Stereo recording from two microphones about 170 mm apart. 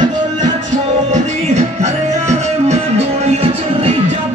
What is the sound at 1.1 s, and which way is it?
Music, 40° right (ahead or behind).